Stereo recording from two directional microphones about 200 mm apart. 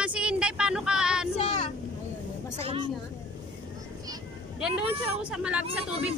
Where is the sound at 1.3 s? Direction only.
35° left (ahead or behind).